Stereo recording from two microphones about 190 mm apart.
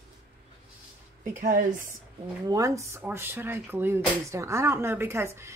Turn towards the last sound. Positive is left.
turn(degrees=-15)  # may be behind; listen again after turning